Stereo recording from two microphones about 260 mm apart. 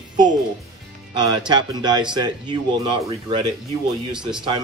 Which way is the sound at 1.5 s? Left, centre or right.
Centre.